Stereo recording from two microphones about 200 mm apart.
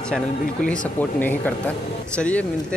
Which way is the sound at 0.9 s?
10° left (ahead or behind).